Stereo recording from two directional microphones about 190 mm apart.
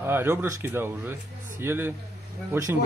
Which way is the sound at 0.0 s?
10° right (ahead or behind).